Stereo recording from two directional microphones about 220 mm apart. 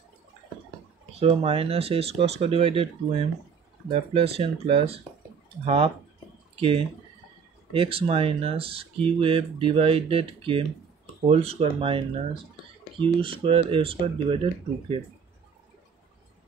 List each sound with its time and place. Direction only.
1.2 s speech: 25° right (ahead or behind)
6.5 s speech: 25° right (ahead or behind)
13.0 s speech: 25° right (ahead or behind)